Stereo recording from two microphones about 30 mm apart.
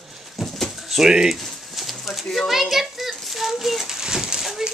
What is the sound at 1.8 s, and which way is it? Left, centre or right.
Bird, centre.